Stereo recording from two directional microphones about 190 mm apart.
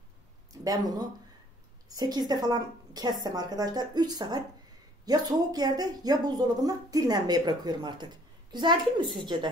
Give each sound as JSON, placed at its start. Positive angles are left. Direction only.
{"t": 0.5, "sound": "speech", "side_deg": -20}